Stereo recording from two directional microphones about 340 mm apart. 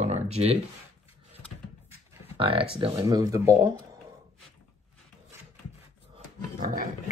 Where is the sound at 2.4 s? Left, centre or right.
Centre.